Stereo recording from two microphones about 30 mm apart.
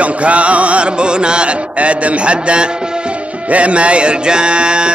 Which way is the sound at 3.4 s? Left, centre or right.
Right.